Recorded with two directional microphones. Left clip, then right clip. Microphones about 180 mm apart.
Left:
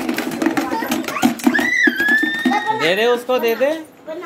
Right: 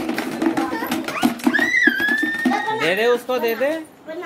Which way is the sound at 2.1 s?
10° left (ahead or behind).